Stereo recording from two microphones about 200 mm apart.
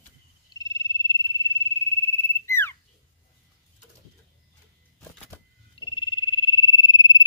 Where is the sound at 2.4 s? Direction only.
10° left (ahead or behind).